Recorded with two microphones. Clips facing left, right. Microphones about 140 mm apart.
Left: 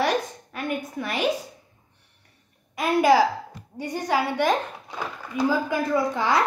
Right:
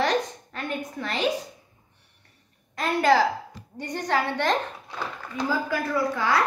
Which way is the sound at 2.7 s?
10° left (ahead or behind).